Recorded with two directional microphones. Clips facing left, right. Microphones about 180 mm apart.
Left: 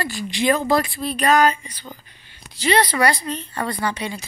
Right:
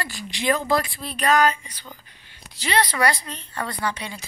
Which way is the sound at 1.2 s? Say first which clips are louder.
Left 2 dB; 25° left (ahead or behind).